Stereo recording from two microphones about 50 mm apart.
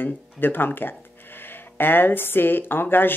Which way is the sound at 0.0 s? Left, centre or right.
Left.